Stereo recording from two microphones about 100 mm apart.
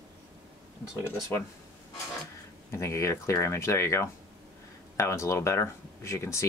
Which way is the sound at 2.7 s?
30° left (ahead or behind).